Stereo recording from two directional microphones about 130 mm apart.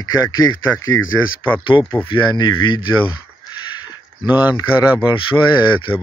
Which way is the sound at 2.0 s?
35° left (ahead or behind).